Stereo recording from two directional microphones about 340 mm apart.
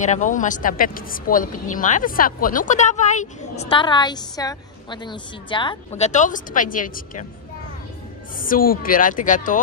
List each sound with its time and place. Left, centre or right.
0.0 s speech: left
8.4 s speech: left